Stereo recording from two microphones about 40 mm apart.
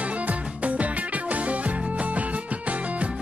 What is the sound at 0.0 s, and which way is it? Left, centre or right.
Music, right.